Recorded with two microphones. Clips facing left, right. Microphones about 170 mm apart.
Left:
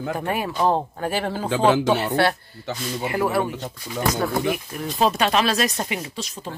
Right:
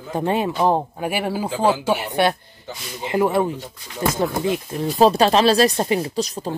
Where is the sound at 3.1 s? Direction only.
20° right (ahead or behind); by 6.5 s 40° right (ahead or behind).